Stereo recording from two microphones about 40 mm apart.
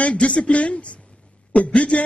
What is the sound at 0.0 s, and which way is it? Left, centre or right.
A man's voice, left.